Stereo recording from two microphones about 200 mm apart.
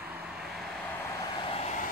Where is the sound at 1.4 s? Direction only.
30° left (ahead or behind).